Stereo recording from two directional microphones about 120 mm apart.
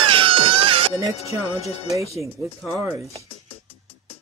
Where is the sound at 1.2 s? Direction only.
60° left (ahead or behind).